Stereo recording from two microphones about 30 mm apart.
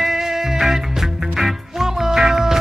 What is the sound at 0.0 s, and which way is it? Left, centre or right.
Music, centre.